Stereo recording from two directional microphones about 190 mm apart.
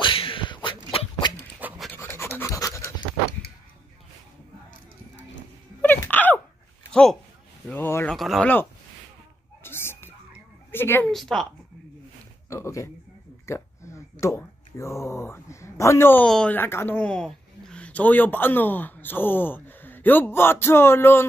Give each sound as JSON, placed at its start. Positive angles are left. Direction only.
{"t": 0.0, "sound": "beatboxing", "side_deg": 25}
{"t": 1.6, "sound": "pant", "side_deg": -10}
{"t": 2.0, "sound": "pant", "side_deg": 15}
{"t": 5.8, "sound": "a sound", "side_deg": 10}
{"t": 9.6, "sound": "whispering", "side_deg": 10}
{"t": 10.7, "sound": "speech", "side_deg": 10}
{"t": 12.4, "sound": "speech", "side_deg": 15}
{"t": 13.5, "sound": "a sound", "side_deg": 15}
{"t": 14.2, "sound": "speech", "side_deg": 15}